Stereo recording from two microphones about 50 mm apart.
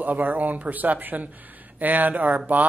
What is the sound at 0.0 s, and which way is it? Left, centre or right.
A man's voice, right.